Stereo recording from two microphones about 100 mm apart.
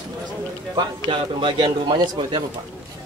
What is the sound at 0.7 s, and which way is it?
A man's voice, 55° right (ahead or behind).